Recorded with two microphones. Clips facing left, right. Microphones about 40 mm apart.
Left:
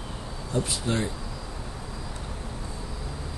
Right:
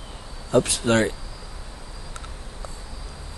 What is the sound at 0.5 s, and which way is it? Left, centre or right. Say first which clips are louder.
Speech: right 8 dB; right.